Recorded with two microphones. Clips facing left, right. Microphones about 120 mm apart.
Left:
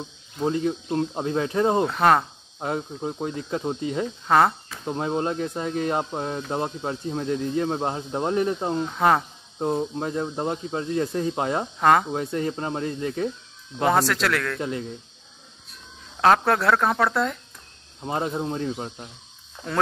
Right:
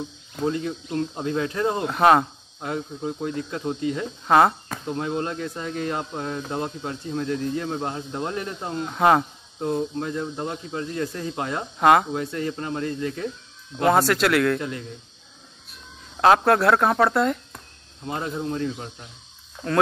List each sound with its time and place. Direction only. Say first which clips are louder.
0.5 s speech: left 3 dB; 25° left (ahead or behind)
1.9 s speech: right 2 dB; 10° right (ahead or behind)
2.6 s speech: left 1 dB; 25° left (ahead or behind)
4.3 s speech: right 2 dB; 5° right (ahead or behind)
4.8 s speech: left 2 dB; 20° left (ahead or behind)
8.8 s speech: right 3 dB; 5° right (ahead or behind)
9.6 s speech: even; 20° left (ahead or behind)
11.8 s speech: right 2 dB; 5° right (ahead or behind)
12.1 s speech: left 1 dB; 25° left (ahead or behind)
13.7 s speech: right 2 dB; centre (ahead or behind)
14.6 s speech: left 3 dB; 20° left (ahead or behind)
16.2 s speech: right 2 dB; centre (ahead or behind)
18.0 s speech: left 2 dB; 25° left (ahead or behind)